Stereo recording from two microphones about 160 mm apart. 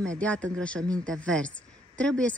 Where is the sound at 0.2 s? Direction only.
5° left (ahead or behind).